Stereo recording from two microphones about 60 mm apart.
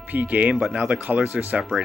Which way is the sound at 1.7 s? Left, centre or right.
Centre.